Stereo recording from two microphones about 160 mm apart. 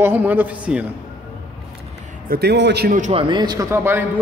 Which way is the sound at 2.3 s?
85° right.